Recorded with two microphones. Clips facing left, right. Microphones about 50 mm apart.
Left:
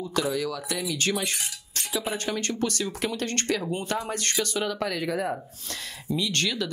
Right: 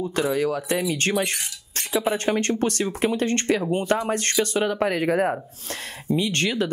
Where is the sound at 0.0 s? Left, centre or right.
Right.